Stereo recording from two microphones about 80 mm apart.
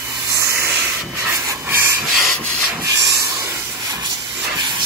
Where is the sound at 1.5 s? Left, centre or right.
Right.